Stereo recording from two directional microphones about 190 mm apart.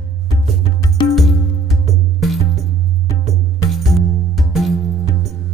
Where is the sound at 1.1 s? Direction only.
Centre (ahead or behind).